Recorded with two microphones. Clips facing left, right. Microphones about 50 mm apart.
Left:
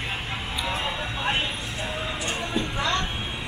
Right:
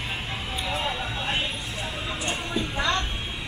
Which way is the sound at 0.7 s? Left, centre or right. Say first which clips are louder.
Right 1 dB; centre.